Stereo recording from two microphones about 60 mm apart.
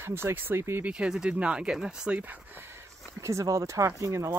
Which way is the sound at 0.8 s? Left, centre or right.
Centre.